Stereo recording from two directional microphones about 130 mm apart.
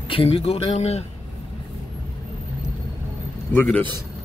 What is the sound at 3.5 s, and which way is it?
Speech, 10° left (ahead or behind).